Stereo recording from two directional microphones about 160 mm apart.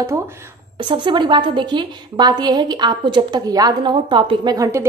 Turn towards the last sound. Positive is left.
turn(degrees=-20)  # may be behind; listen again after turning